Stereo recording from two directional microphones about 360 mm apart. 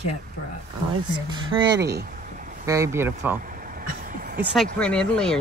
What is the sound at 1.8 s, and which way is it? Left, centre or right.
Speech, right.